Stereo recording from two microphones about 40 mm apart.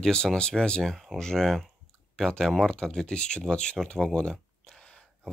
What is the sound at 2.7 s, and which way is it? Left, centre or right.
Speech, centre.